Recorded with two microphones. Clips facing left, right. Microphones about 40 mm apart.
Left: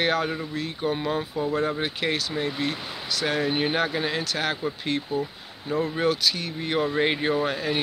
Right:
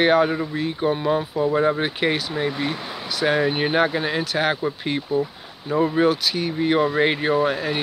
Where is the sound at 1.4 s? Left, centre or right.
Right.